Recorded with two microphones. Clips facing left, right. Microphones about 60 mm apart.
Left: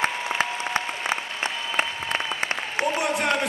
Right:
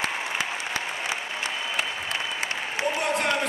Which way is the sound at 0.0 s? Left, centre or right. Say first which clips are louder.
Left 3 dB; left.